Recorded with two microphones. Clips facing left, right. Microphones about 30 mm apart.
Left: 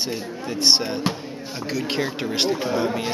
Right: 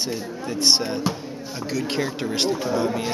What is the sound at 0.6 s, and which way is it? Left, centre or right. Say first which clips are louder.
Speech: left 1 dB; centre.